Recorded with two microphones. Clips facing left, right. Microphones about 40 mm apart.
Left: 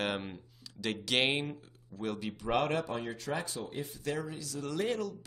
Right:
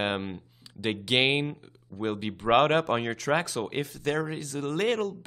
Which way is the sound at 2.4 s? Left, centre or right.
Right.